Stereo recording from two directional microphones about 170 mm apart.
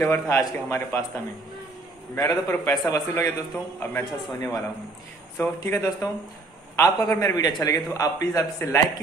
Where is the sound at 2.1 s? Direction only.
20° left (ahead or behind).